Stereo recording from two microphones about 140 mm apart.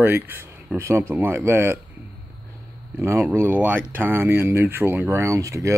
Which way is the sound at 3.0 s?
20° right (ahead or behind).